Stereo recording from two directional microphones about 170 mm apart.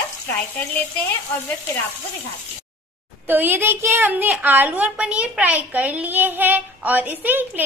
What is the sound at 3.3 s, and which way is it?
A woman's voice, 10° right (ahead or behind).